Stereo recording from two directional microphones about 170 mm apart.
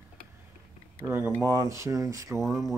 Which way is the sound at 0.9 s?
10° right (ahead or behind).